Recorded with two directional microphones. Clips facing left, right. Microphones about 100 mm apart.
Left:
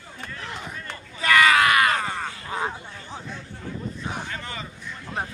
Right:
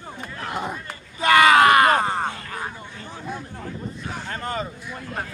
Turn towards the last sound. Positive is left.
turn(degrees=-45)  # may be behind; listen again after turning